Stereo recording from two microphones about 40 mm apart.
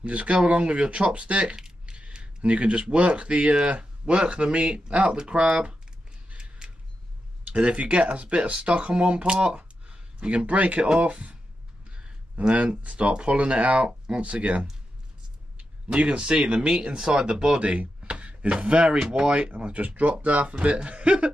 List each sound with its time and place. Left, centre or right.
0.0 s speech: right
1.6 s a sound: right
3.6 s speech: right
6.3 s a sound: right
7.4 s a man's voice: right
11.9 s a sound: right
12.8 s speech: right
15.9 s speech: right
17.3 s speech: right
18.9 s speech: centre
19.2 s speech: right
19.6 s speech: right
20.4 s speech: right